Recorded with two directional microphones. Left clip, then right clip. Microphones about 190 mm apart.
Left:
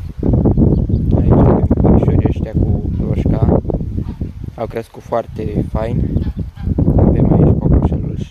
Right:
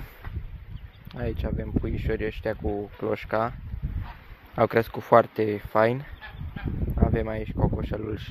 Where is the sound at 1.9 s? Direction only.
10° left (ahead or behind).